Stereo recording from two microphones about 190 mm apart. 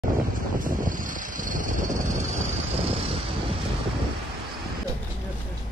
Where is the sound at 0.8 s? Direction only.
45° right (ahead or behind).